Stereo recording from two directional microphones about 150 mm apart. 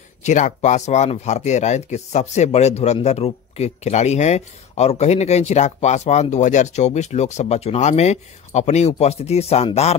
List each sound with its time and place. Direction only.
0.2 s speech: 55° left (ahead or behind)